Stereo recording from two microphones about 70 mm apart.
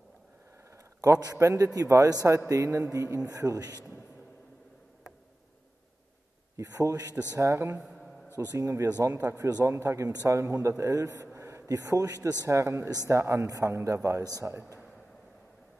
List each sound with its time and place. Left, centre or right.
1.0 s a man's voice: right
2.9 s a man's voice: right
3.3 s a man's voice: right
6.5 s a man's voice: right
7.8 s a sound: centre
8.5 s a man's voice: right
12.4 s a man's voice: right